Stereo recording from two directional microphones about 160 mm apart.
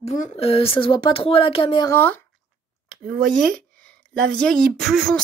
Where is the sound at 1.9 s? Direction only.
10° left (ahead or behind).